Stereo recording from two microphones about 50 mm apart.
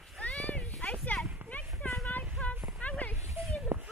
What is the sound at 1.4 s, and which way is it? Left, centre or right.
Clip-clop, right.